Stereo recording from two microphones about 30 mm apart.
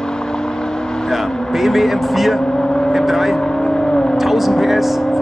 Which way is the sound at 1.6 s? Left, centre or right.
Centre.